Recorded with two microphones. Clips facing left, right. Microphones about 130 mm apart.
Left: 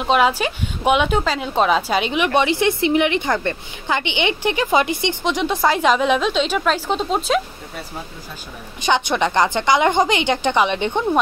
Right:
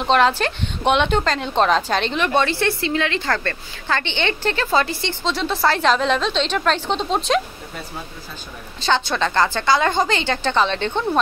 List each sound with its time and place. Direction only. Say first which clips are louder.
0.0 s speech: even; 10° left (ahead or behind)
8.8 s speech: left 2 dB; 15° left (ahead or behind)